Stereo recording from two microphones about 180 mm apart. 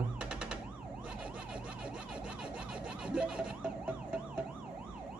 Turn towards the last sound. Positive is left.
turn(degrees=-5)  # may be behind; listen again after turning